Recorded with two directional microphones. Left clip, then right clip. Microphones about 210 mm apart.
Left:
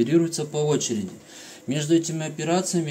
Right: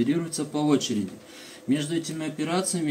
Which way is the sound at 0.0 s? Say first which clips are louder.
Left 6 dB; 55° left (ahead or behind).